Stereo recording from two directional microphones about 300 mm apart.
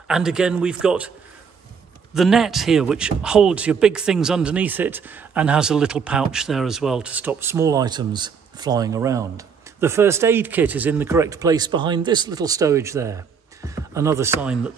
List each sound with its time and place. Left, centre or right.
0.1 s speech: centre
2.1 s speech: centre